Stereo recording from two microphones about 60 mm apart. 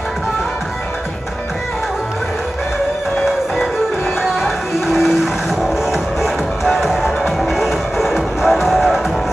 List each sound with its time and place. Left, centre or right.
4.2 s music: centre